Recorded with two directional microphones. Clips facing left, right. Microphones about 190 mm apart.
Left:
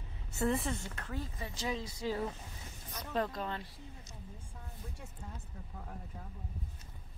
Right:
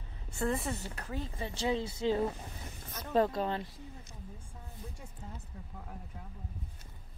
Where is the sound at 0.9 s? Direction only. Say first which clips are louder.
Right 2 dB; 20° right (ahead or behind).